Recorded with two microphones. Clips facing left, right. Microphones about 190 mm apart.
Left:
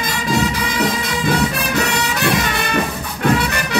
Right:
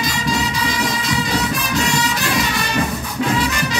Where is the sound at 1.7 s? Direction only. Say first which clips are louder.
Right 2 dB; 60° left (ahead or behind).